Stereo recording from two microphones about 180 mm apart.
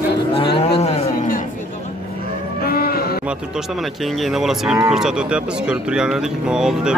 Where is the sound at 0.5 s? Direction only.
35° left (ahead or behind).